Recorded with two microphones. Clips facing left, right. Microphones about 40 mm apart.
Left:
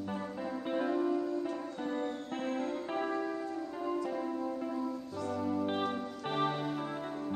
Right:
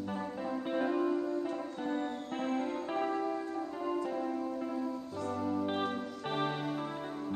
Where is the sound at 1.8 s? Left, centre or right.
Centre.